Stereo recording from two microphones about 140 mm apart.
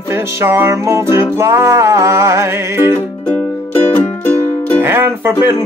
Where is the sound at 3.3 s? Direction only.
15° left (ahead or behind).